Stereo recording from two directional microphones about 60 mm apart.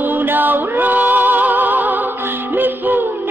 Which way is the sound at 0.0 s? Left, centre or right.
Right.